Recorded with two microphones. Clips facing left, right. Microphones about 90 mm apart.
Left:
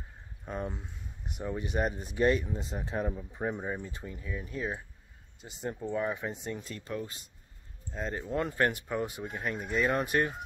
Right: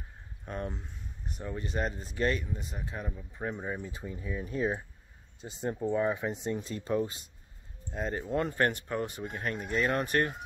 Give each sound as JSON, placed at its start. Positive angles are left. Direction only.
{"t": 0.5, "sound": "speech", "side_deg": 5}
{"t": 3.4, "sound": "speech", "side_deg": 10}
{"t": 4.1, "sound": "speech", "side_deg": -20}
{"t": 5.7, "sound": "speech", "side_deg": -15}
{"t": 7.9, "sound": "speech", "side_deg": -5}